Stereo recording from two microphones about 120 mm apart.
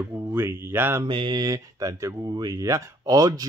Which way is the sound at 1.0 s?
40° right (ahead or behind).